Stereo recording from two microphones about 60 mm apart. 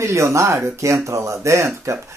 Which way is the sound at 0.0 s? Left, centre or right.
Right.